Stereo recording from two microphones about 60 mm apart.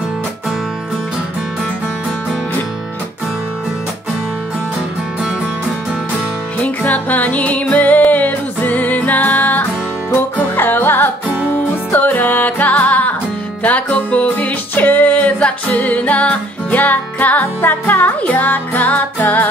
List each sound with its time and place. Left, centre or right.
6.6 s music: left